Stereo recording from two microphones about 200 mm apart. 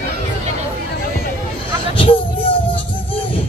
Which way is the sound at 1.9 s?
25° left (ahead or behind).